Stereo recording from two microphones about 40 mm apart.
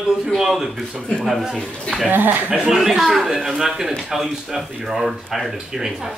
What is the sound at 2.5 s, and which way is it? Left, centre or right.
Speech, centre.